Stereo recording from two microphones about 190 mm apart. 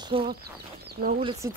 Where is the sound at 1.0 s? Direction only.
50° right (ahead or behind).